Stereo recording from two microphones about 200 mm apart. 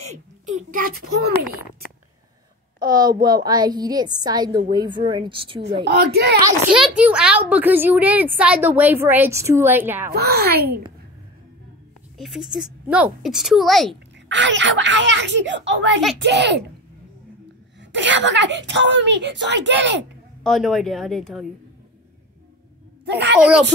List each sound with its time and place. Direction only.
0.5 s a child's voice: 40° right (ahead or behind)
2.8 s a woman's voice: 20° right (ahead or behind)
5.9 s a child's voice: 50° right (ahead or behind)
7.0 s a woman's voice: 5° right (ahead or behind)
10.1 s a child's voice: 50° right (ahead or behind)
12.2 s speech: centre (ahead or behind)
14.3 s a woman's voice: 65° right (ahead or behind)
17.9 s a woman's voice: 65° right (ahead or behind)
20.4 s speech: centre (ahead or behind)
23.0 s a child's voice: 60° right (ahead or behind)